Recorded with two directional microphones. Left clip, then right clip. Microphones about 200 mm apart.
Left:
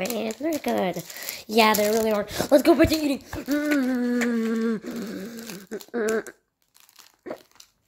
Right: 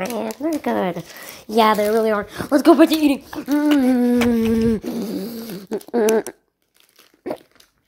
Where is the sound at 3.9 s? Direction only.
15° right (ahead or behind).